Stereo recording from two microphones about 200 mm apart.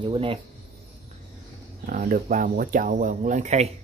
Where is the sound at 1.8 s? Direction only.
45° right (ahead or behind).